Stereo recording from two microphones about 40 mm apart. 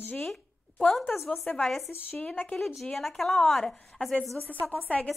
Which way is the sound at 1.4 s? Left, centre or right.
Centre.